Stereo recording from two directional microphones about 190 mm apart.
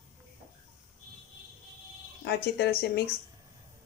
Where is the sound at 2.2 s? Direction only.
55° left (ahead or behind).